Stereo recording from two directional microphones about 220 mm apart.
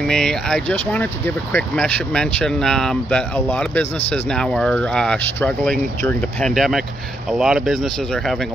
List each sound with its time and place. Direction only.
0.1 s speech: 5° left (ahead or behind)